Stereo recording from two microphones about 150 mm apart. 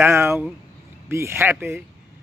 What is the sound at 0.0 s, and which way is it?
Speech, 15° right (ahead or behind).